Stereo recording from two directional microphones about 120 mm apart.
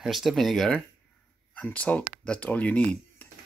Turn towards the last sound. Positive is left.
turn(degrees=15)  # may be behind; listen again after turning